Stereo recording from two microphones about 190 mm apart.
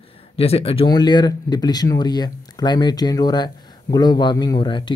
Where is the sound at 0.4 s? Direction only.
30° left (ahead or behind).